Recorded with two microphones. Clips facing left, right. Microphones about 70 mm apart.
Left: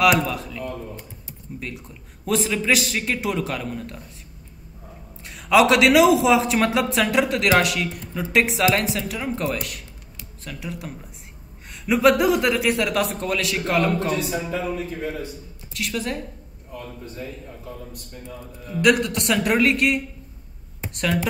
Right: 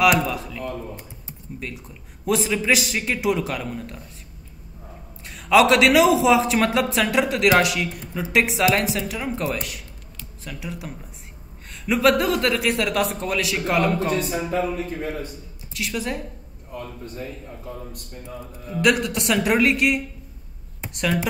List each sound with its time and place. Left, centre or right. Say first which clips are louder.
0.2 s a man's voice: even; centre
5.2 s a man's voice: even; centre
14.1 s speech: right 2 dB; right
15.7 s a man's voice: even; centre
18.8 s a man's voice: left 1 dB; centre